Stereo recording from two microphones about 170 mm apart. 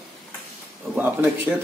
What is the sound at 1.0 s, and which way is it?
Speech, 10° right (ahead or behind).